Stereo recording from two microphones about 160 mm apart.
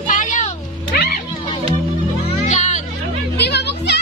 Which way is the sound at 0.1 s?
55° left (ahead or behind).